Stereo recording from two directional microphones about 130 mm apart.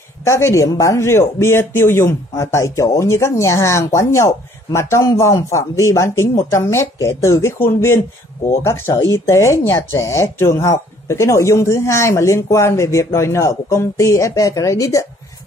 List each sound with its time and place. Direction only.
0.2 s speech: 20° left (ahead or behind)